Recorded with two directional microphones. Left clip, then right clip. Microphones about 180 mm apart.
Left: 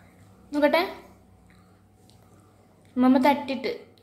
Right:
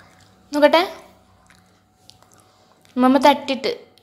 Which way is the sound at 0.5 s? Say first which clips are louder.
Right 7 dB; 30° right (ahead or behind).